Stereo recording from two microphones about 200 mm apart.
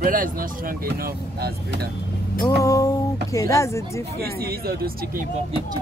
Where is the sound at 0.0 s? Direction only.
45° right (ahead or behind).